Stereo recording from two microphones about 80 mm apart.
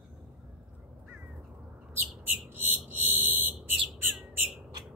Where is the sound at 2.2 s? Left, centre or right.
Right.